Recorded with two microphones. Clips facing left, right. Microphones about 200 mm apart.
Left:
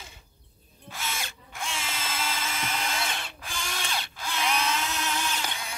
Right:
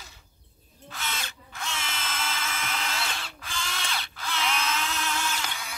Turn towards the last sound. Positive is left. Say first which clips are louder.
# left 1 dB
turn(degrees=15)  # may be behind; listen again after turning